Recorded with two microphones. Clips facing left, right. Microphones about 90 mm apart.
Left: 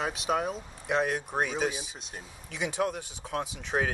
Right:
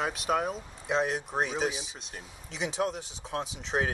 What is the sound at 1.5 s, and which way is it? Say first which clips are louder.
Speech: even; 10° right (ahead or behind).